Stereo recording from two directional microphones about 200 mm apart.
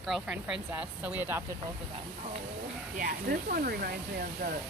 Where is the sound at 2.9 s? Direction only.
50° right (ahead or behind).